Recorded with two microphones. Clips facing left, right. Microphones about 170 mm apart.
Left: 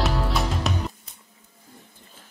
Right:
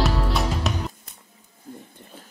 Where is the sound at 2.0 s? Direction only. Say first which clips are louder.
Right 7 dB; 65° right (ahead or behind).